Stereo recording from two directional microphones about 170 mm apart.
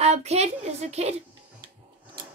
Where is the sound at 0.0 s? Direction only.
40° right (ahead or behind).